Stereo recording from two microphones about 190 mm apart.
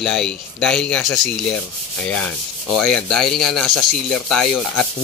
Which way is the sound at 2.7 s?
5° left (ahead or behind).